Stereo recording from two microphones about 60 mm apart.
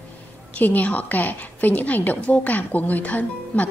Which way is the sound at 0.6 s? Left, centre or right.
Left.